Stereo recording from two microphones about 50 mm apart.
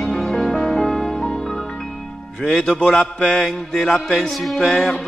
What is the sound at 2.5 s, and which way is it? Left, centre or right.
Speech, centre.